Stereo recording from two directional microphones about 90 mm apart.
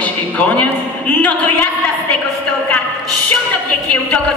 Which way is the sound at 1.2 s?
15° left (ahead or behind).